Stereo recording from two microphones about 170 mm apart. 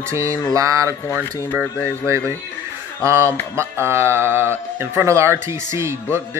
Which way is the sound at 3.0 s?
15° right (ahead or behind).